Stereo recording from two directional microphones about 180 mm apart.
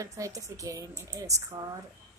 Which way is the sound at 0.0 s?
20° right (ahead or behind).